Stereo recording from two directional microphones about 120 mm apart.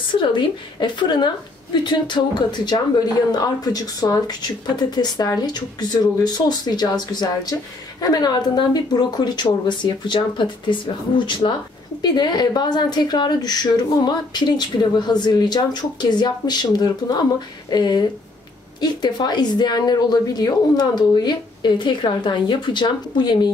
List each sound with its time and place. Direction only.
0.2 s a woman's voice: 40° left (ahead or behind)